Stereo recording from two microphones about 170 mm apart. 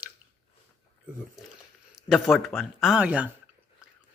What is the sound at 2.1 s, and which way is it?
Speech, centre (ahead or behind).